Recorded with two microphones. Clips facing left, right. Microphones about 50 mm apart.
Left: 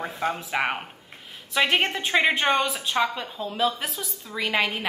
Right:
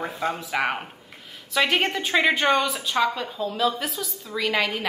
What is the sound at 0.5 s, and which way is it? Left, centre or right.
A woman's voice, centre.